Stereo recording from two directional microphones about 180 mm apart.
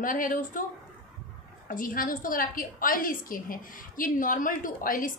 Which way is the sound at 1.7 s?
50° left (ahead or behind).